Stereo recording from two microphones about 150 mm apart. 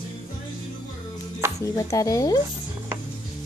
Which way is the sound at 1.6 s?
20° left (ahead or behind).